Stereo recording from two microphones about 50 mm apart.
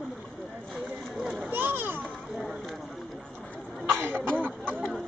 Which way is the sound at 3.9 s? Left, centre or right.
Right.